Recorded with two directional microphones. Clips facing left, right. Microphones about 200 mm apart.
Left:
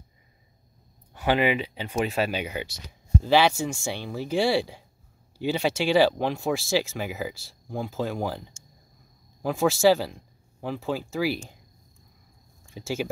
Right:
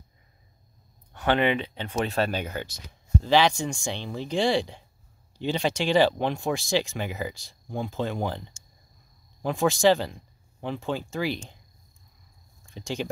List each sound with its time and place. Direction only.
1.1 s speech: 10° left (ahead or behind)
12.7 s speech: 5° left (ahead or behind)